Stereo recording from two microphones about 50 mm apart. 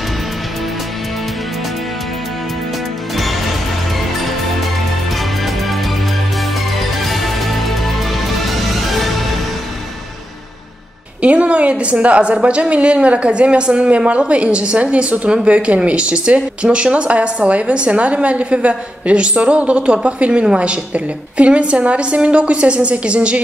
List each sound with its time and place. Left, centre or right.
3.2 s music: centre
6.8 s music: centre
11.1 s a woman's voice: right